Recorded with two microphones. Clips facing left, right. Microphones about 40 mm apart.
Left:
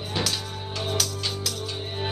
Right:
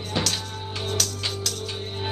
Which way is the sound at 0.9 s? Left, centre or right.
Centre.